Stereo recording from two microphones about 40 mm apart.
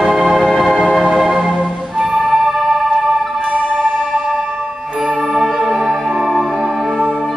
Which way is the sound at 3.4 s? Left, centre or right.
Right.